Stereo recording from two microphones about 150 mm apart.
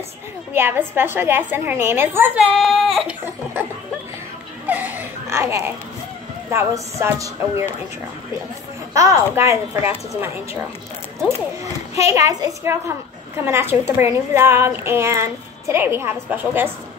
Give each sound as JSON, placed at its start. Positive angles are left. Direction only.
{"t": 0.5, "sound": "a woman's voice", "side_deg": -15}
{"t": 2.5, "sound": "speech", "side_deg": 0}
{"t": 4.6, "sound": "baby cry", "side_deg": -10}
{"t": 6.5, "sound": "speech", "side_deg": -20}
{"t": 8.9, "sound": "a woman's voice", "side_deg": -20}
{"t": 12.1, "sound": "a woman's voice", "side_deg": -20}